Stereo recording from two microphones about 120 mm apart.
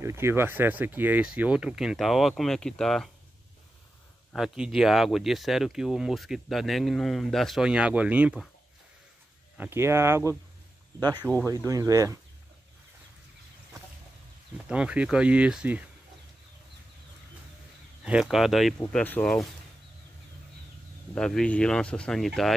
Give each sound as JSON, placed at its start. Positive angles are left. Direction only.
{"t": 0.0, "sound": "speech", "side_deg": -20}
{"t": 4.4, "sound": "speech", "side_deg": -5}
{"t": 9.6, "sound": "speech", "side_deg": -20}
{"t": 11.0, "sound": "speech", "side_deg": -35}
{"t": 14.7, "sound": "speech", "side_deg": -10}
{"t": 18.0, "sound": "speech", "side_deg": -5}
{"t": 18.9, "sound": "speech", "side_deg": 10}
{"t": 21.1, "sound": "speech", "side_deg": 5}